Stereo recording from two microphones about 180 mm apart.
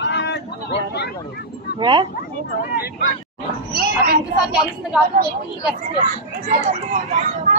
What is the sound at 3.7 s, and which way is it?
Speech, 55° right (ahead or behind).